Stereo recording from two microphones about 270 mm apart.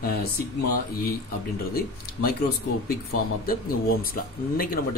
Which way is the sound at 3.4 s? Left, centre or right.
Left.